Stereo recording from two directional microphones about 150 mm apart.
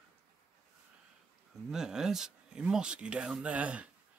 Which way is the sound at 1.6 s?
5° right (ahead or behind).